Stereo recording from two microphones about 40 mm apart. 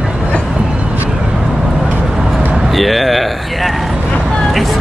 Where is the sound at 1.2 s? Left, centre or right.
Centre.